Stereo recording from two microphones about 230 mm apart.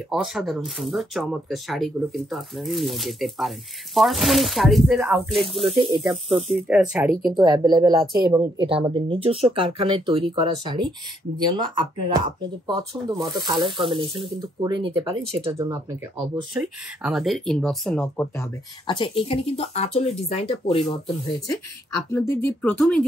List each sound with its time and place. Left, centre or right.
0.1 s speech: centre
5.6 s speech: right
6.7 s speech: centre
7.3 s speech: centre
16.5 s speech: centre; by 20.8 s left
22.1 s speech: centre